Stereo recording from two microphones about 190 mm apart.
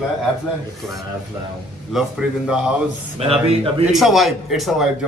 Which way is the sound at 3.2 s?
30° right (ahead or behind).